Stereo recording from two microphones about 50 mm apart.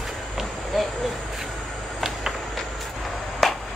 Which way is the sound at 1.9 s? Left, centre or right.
Centre.